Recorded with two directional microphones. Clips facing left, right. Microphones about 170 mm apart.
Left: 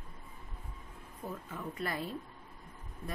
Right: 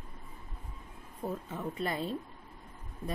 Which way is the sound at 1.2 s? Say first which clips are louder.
Right 5 dB; 25° right (ahead or behind).